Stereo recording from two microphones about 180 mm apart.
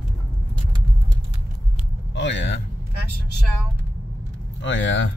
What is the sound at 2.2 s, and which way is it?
Speech, 90° left.